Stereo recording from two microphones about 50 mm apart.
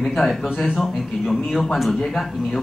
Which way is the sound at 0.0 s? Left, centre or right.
Centre.